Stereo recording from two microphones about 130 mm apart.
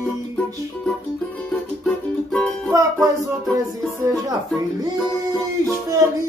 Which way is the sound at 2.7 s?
25° right (ahead or behind).